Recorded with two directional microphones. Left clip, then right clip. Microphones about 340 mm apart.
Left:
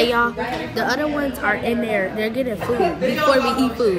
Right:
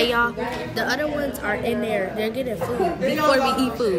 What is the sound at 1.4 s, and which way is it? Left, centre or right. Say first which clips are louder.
A woman's voice: left 5 dB; centre.